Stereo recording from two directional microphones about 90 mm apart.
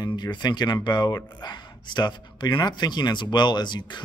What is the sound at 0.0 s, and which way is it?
Speech, 50° left (ahead or behind).